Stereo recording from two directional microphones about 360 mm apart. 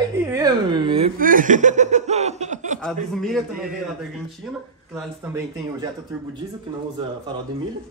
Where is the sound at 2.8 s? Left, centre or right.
Centre.